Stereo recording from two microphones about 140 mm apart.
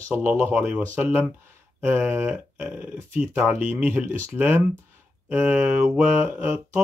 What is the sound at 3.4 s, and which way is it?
Speech, 10° right (ahead or behind).